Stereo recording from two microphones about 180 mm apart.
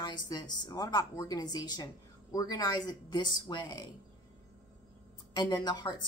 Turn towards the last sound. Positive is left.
turn(degrees=25)  # may be behind; listen again after turning